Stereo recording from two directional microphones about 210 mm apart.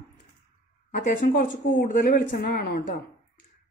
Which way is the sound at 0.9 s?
40° left (ahead or behind).